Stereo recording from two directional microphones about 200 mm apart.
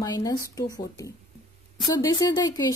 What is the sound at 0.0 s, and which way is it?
Speech, 20° left (ahead or behind).